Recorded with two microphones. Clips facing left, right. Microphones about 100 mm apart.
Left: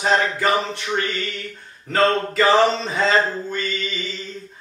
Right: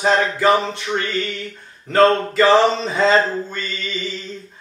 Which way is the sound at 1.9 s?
Centre (ahead or behind).